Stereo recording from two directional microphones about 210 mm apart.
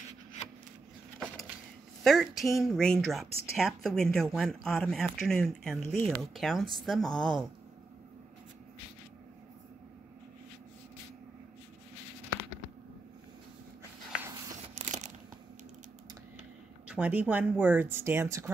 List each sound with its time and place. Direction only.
2.0 s speech: centre (ahead or behind)
14.8 s crunch: 35° right (ahead or behind)
16.8 s speech: 5° right (ahead or behind)